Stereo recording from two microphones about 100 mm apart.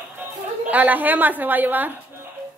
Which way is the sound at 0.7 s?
15° right (ahead or behind).